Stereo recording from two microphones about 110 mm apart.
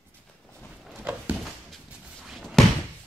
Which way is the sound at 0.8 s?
Centre (ahead or behind).